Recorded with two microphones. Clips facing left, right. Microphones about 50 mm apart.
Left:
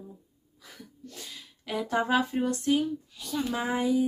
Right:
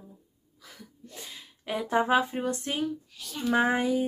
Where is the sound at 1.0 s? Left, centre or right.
Right.